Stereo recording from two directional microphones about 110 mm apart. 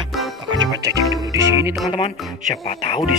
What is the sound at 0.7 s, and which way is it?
Music, 30° right (ahead or behind).